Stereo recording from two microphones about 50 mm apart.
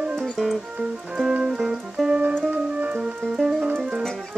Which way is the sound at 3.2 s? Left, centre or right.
Centre.